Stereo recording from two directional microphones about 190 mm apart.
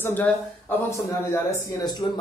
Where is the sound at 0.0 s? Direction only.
10° left (ahead or behind).